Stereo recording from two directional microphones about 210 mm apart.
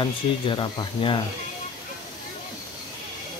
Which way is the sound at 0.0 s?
20° left (ahead or behind).